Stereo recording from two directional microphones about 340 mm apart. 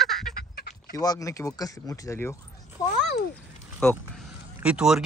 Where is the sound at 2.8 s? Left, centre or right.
Centre.